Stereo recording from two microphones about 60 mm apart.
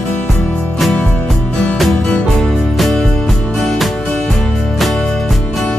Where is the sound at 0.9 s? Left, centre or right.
Left.